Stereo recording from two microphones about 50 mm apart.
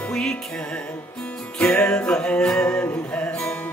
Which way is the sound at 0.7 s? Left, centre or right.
Left.